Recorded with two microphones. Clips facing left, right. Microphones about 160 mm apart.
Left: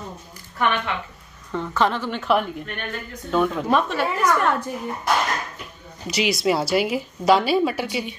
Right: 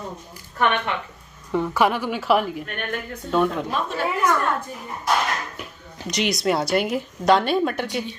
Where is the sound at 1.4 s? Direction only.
10° right (ahead or behind).